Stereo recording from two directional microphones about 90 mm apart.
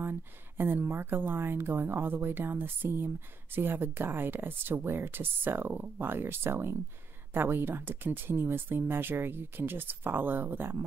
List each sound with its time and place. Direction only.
0.0 s speech: 25° right (ahead or behind)